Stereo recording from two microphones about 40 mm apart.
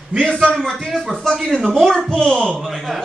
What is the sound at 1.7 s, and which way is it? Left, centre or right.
Speech, centre.